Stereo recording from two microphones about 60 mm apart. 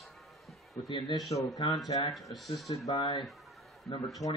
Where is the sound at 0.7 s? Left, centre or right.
Left.